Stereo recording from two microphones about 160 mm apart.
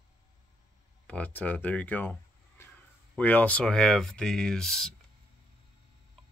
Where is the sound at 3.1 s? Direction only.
10° left (ahead or behind).